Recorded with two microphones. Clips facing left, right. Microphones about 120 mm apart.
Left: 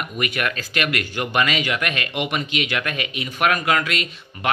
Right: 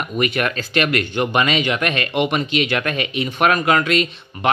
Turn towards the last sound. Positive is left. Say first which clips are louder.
# right 5 dB
turn(degrees=-30)  # may be behind; listen again after turning